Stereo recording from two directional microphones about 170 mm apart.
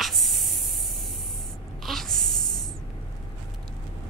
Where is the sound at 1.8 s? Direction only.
Centre (ahead or behind).